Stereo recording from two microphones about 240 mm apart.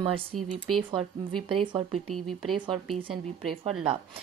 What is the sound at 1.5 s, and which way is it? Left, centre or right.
Speech, right.